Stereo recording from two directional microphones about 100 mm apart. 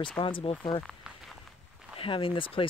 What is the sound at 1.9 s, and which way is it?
Speech, 65° left (ahead or behind).